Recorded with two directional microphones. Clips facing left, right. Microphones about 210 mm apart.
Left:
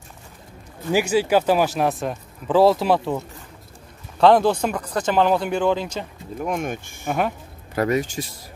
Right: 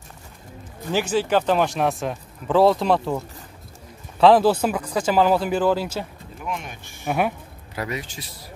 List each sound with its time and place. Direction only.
0.9 s speech: 10° left (ahead or behind); by 6.0 s 5° right (ahead or behind)
6.4 s speech: 45° left (ahead or behind)
7.1 s speech: 10° right (ahead or behind)
7.7 s speech: 50° left (ahead or behind)